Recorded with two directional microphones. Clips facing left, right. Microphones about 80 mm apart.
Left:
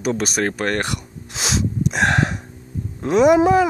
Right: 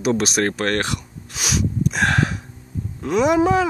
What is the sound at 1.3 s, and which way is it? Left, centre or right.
Snort, left.